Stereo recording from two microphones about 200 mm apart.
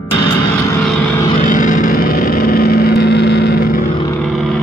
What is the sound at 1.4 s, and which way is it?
Vehicle, 40° left (ahead or behind).